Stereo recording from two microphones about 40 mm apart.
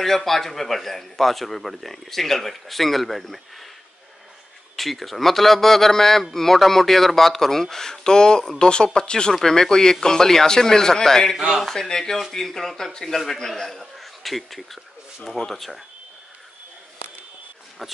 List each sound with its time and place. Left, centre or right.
0.0 s a man's voice: centre
4.7 s a man's voice: centre
11.3 s speech: centre
11.7 s a man's voice: centre